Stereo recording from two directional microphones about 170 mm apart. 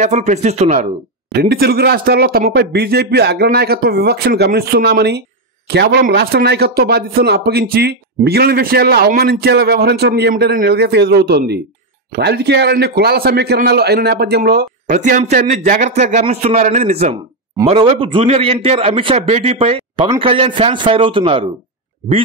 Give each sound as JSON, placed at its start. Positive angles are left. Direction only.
{"t": 0.0, "sound": "speech", "side_deg": -45}
{"t": 1.4, "sound": "speech", "side_deg": -65}
{"t": 14.9, "sound": "a man's voice", "side_deg": -45}